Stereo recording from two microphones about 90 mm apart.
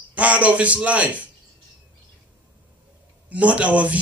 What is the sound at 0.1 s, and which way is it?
A man's voice, 15° right (ahead or behind).